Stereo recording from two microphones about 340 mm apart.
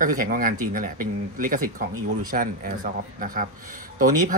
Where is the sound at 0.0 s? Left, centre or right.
Right.